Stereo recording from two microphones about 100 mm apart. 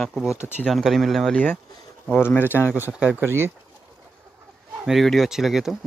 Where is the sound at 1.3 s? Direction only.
15° left (ahead or behind).